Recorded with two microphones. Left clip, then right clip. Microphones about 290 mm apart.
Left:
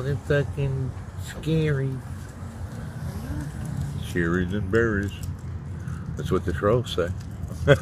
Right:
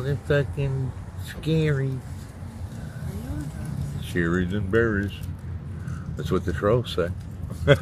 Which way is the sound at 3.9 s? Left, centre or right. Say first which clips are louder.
Even; centre.